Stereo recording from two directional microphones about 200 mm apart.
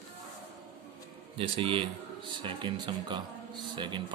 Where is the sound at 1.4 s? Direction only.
25° right (ahead or behind).